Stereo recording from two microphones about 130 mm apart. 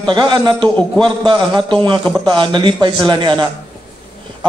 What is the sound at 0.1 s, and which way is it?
A man's voice, 35° right (ahead or behind).